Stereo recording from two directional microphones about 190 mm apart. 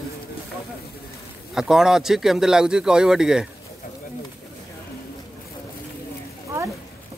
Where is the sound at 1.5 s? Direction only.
Centre (ahead or behind).